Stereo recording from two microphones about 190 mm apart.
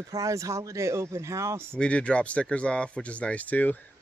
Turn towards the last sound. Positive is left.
turn(degrees=10)  # may be behind; listen again after turning